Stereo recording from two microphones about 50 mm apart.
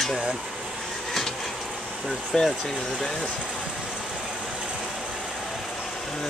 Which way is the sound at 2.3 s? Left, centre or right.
Centre.